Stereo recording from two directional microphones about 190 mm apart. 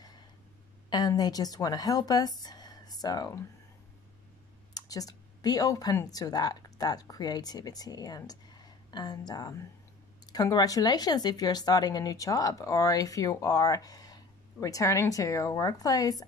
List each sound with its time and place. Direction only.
0.8 s speech: 20° left (ahead or behind)
4.7 s speech: 20° left (ahead or behind)